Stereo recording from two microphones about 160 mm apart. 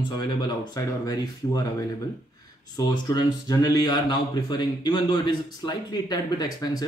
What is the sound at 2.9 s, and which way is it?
Speech, 25° left (ahead or behind).